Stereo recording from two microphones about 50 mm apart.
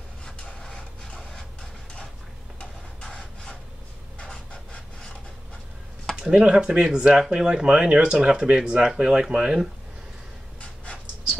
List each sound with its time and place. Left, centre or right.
0.7 s printer: centre
2.6 s rub: centre
4.5 s a sound: left
6.1 s speech: centre